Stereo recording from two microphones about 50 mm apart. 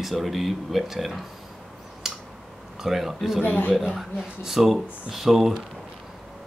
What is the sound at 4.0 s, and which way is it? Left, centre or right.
Speech, centre.